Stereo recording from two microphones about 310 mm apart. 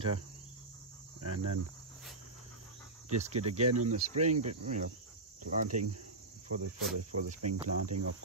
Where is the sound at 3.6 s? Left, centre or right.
Right.